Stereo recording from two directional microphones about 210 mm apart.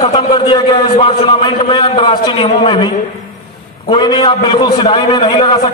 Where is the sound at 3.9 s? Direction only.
20° left (ahead or behind).